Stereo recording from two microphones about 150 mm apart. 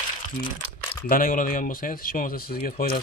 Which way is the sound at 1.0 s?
70° left (ahead or behind).